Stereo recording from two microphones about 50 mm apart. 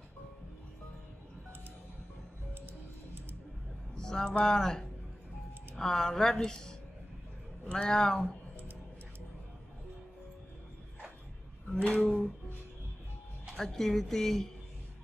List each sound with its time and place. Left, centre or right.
3.9 s a woman's voice: centre
11.7 s speech: centre
13.6 s a woman's voice: centre